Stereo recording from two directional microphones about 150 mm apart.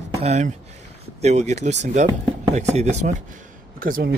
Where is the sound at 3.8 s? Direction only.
80° right.